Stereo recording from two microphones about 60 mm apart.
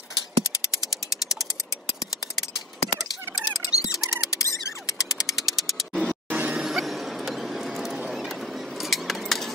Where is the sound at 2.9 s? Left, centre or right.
Centre.